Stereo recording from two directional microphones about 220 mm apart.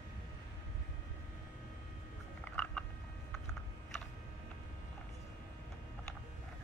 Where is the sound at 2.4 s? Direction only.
5° left (ahead or behind).